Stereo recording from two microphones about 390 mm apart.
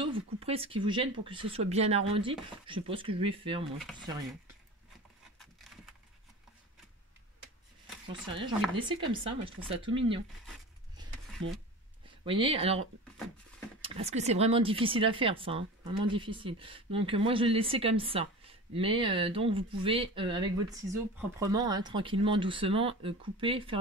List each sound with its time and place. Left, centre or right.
0.0 s speech: centre
8.7 s speech: centre
11.4 s speech: right
12.3 s speech: centre